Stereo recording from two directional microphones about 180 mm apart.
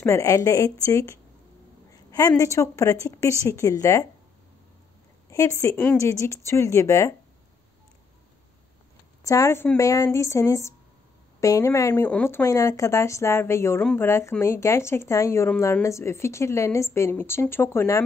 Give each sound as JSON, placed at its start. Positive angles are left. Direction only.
{"t": 0.0, "sound": "a woman's voice", "side_deg": 15}
{"t": 5.3, "sound": "a woman's voice", "side_deg": 15}
{"t": 9.2, "sound": "a woman's voice", "side_deg": 20}